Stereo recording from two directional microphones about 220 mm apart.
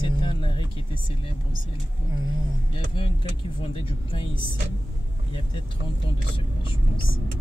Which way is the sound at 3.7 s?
25° left (ahead or behind).